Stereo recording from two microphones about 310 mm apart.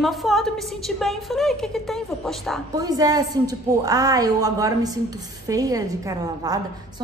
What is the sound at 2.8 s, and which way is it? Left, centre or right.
A woman's voice, centre.